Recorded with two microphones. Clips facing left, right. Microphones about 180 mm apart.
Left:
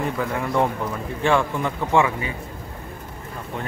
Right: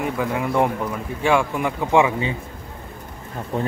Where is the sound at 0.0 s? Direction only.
10° right (ahead or behind).